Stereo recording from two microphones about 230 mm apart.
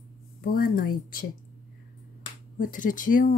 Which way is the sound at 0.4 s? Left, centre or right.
Left.